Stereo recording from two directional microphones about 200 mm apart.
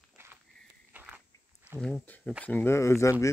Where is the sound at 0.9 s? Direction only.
10° right (ahead or behind).